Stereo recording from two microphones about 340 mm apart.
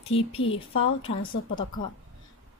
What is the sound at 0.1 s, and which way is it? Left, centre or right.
Speech, centre.